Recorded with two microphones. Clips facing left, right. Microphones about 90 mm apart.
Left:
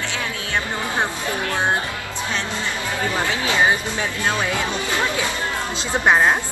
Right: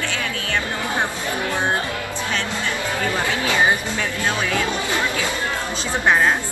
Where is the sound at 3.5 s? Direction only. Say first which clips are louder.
Even; 20° left (ahead or behind).